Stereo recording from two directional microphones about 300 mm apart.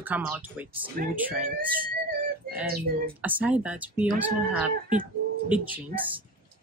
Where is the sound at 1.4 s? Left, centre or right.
Right.